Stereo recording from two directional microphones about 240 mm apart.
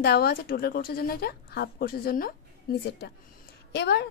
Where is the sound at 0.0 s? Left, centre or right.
Left.